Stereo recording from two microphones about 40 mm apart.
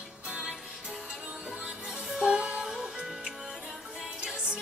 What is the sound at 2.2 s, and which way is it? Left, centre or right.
Music, right.